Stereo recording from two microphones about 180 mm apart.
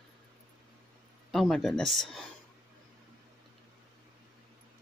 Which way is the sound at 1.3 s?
Centre (ahead or behind).